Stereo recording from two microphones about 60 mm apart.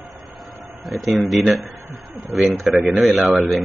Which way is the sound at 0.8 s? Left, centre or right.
Centre.